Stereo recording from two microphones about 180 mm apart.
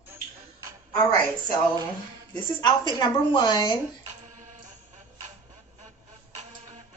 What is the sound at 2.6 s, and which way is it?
A woman's voice, 25° left (ahead or behind).